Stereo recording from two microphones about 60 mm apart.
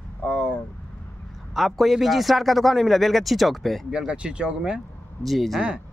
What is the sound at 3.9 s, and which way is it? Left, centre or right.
Speech, centre.